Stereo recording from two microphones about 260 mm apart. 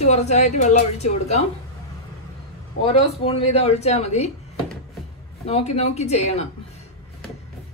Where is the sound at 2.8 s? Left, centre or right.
Left.